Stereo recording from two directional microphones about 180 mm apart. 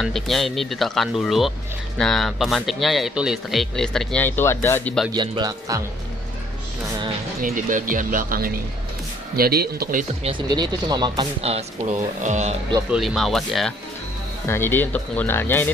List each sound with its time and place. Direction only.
0.0 s speech: centre (ahead or behind)
5.1 s speech: 25° right (ahead or behind)
7.4 s speech: 50° right (ahead or behind)
10.2 s speech: 25° right (ahead or behind)
12.2 s speech: 40° right (ahead or behind)
12.9 s speech: centre (ahead or behind)
14.5 s speech: 10° left (ahead or behind)